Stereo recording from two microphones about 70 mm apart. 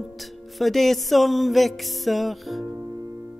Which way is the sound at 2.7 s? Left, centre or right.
Right.